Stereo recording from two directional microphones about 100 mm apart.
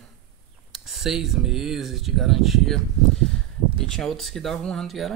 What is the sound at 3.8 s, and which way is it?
Speech, 5° left (ahead or behind).